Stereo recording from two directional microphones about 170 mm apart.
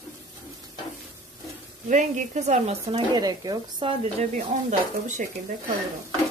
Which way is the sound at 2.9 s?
25° right (ahead or behind).